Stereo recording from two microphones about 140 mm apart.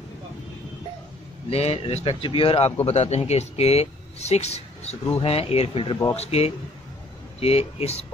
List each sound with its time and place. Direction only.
1.5 s speech: 45° left (ahead or behind)